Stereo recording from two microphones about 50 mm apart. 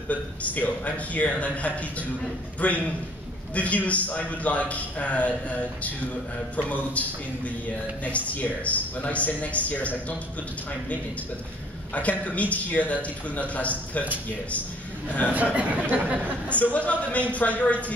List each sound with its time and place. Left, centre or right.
0.1 s a man's voice: left
11.9 s a man's voice: left
15.3 s speech: right
16.4 s a man's voice: left